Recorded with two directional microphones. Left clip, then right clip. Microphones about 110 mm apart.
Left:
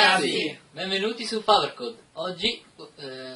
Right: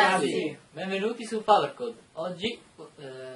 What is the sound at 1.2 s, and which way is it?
Speech, 45° right (ahead or behind).